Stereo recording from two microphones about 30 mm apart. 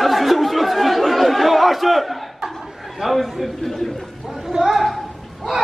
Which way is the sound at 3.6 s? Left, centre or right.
Centre.